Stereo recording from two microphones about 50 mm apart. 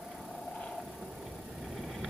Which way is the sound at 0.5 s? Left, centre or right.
Centre.